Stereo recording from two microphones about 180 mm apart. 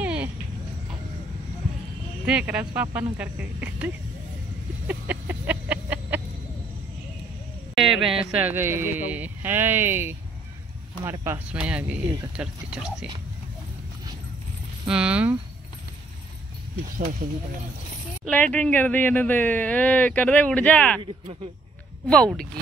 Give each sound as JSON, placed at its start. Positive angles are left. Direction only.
{"t": 0.0, "sound": "a sound", "side_deg": -10}
{"t": 2.2, "sound": "speech", "side_deg": -5}
{"t": 4.8, "sound": "a sound", "side_deg": -10}
{"t": 7.7, "sound": "speech", "side_deg": 0}
{"t": 14.9, "sound": "speech", "side_deg": -5}
{"t": 17.2, "sound": "speech", "side_deg": -50}
{"t": 18.3, "sound": "speech", "side_deg": 10}
{"t": 22.0, "sound": "speech", "side_deg": 5}